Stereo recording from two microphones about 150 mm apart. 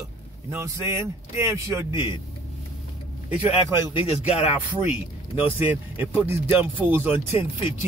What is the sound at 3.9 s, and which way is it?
Speech, 45° left (ahead or behind).